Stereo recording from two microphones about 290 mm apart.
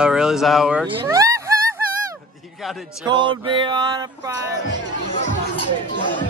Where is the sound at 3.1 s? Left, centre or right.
Centre.